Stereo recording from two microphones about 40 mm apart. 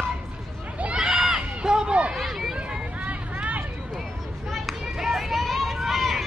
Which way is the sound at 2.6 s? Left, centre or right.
Right.